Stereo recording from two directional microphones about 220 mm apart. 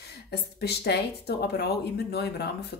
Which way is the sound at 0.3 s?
50° left (ahead or behind).